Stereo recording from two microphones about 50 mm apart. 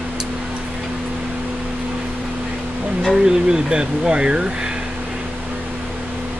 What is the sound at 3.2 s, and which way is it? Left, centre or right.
Speech, centre.